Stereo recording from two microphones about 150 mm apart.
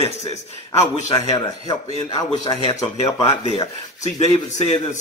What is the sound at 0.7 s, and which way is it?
A man's voice, 20° left (ahead or behind).